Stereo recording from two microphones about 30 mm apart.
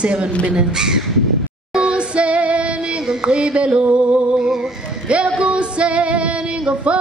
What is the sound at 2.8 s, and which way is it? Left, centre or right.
Speech, right.